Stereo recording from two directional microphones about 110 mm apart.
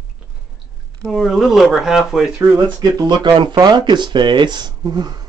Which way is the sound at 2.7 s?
40° right (ahead or behind).